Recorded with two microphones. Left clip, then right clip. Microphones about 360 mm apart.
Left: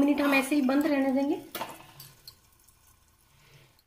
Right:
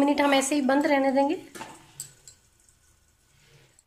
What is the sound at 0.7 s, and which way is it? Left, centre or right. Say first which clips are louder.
Speech: right 4 dB; right.